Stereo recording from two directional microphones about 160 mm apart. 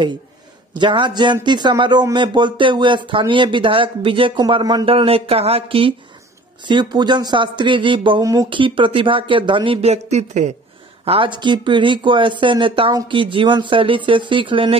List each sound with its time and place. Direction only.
0.7 s speech: 30° right (ahead or behind)
11.1 s speech: 30° right (ahead or behind)